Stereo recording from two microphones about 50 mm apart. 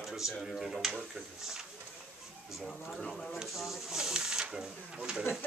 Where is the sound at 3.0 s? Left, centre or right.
Centre.